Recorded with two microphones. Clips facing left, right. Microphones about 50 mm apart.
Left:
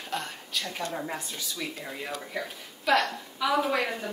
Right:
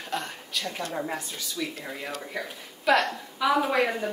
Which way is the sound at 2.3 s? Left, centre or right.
Centre.